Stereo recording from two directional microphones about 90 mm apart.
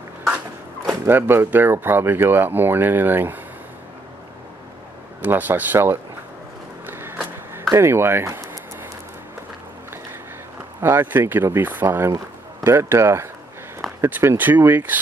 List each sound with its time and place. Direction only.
1.0 s speech: 25° right (ahead or behind)
5.2 s speech: 20° right (ahead or behind)
6.9 s a sound: 25° right (ahead or behind)
7.7 s speech: 30° right (ahead or behind)
10.8 s speech: 25° right (ahead or behind)